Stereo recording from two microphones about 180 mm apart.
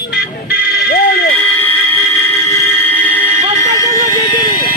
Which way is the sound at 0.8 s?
60° left (ahead or behind).